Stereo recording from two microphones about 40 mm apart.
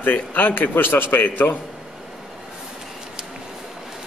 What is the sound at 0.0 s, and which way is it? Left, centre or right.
A man's voice, left.